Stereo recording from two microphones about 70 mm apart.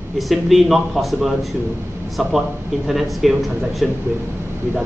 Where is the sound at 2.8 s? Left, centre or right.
Centre.